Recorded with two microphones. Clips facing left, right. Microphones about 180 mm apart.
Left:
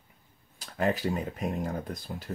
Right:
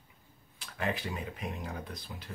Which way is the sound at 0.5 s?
40° left (ahead or behind).